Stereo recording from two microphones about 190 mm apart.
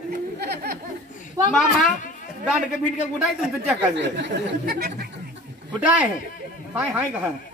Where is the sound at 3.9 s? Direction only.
65° right (ahead or behind).